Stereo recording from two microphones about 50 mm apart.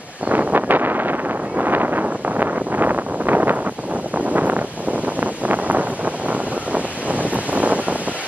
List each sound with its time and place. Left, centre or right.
0.3 s wind noise: right
1.6 s vehicle: right
4.3 s a sound: right